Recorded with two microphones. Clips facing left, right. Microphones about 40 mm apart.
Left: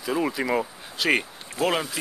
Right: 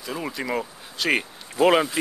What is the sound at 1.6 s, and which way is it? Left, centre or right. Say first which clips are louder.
Speech: right 6 dB; centre.